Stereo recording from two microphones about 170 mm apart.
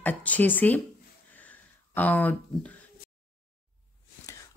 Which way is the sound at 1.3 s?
10° left (ahead or behind).